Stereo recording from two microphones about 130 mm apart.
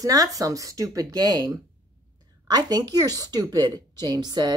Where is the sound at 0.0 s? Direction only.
30° right (ahead or behind).